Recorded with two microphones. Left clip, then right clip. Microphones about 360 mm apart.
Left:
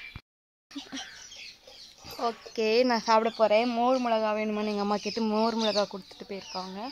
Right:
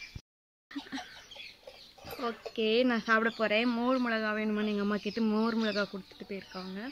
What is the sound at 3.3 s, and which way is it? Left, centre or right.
Speech, left.